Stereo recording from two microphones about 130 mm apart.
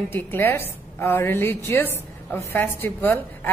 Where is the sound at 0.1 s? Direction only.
15° left (ahead or behind).